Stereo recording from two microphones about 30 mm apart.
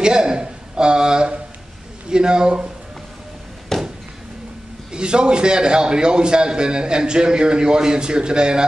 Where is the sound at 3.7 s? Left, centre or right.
Centre.